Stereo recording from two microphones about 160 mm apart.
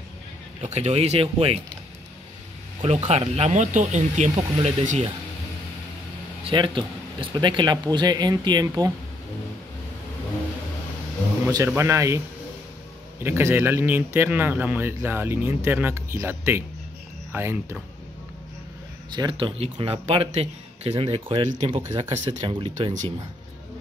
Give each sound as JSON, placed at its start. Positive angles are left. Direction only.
{"t": 0.7, "sound": "speech", "side_deg": -45}
{"t": 2.8, "sound": "speech", "side_deg": -40}
{"t": 6.5, "sound": "speech", "side_deg": -30}
{"t": 11.4, "sound": "speech", "side_deg": -15}
{"t": 13.2, "sound": "speech", "side_deg": -15}
{"t": 19.1, "sound": "speech", "side_deg": -30}